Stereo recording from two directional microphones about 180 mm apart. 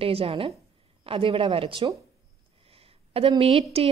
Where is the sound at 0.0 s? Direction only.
30° right (ahead or behind).